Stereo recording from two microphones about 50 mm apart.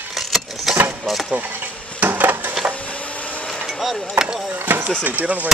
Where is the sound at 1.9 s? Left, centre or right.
Right.